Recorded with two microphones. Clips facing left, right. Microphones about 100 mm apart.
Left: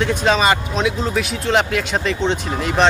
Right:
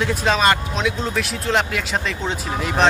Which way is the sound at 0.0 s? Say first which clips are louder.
Left 2 dB; centre (ahead or behind).